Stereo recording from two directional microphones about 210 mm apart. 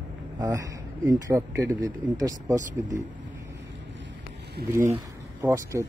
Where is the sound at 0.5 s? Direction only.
15° right (ahead or behind).